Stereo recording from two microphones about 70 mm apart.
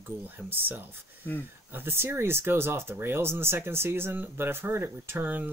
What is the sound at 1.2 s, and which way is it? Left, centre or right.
Speech, left.